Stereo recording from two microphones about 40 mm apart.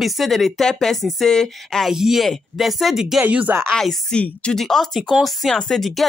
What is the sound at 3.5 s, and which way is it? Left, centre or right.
Speech, right.